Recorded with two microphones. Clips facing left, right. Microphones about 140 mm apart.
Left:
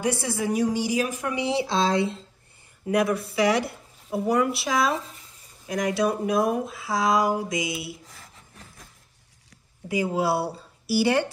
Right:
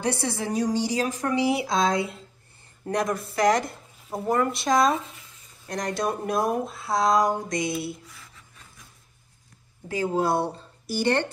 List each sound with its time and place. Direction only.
0.1 s a woman's voice: 15° left (ahead or behind)
1.4 s speech: 30° left (ahead or behind)
2.9 s speech: 5° left (ahead or behind)
9.8 s speech: 10° left (ahead or behind)